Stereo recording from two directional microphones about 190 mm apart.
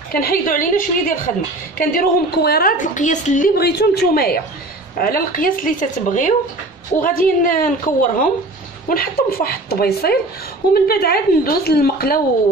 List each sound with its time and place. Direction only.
0.1 s a woman's voice: 50° left (ahead or behind)